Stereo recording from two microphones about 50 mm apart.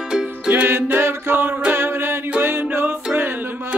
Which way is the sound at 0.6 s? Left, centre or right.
Right.